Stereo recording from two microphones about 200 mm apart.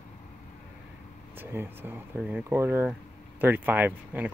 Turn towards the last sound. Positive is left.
turn(degrees=-10)  # may be behind; listen again after turning